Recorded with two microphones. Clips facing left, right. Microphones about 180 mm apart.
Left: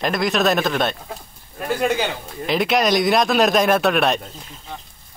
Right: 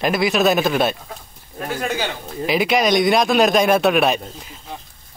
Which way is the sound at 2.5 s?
Centre (ahead or behind).